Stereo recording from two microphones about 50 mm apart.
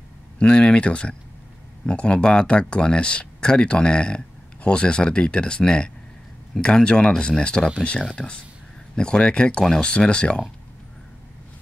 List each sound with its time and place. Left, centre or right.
0.4 s speech: centre